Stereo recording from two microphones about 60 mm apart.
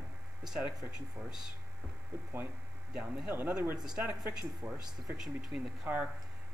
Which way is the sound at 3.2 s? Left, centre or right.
Right.